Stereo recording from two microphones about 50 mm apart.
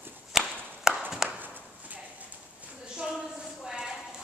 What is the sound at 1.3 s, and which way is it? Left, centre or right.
Clip-clop, right.